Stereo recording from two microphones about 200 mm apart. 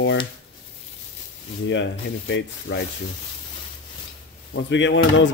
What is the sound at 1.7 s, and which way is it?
Speech, 65° left (ahead or behind).